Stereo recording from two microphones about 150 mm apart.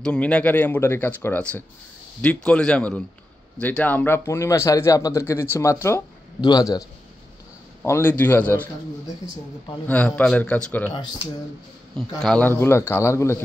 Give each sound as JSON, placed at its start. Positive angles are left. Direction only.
{"t": 0.0, "sound": "a man's voice", "side_deg": 5}
{"t": 7.8, "sound": "speech", "side_deg": 15}
{"t": 9.8, "sound": "speech", "side_deg": 10}
{"t": 12.2, "sound": "speech", "side_deg": 5}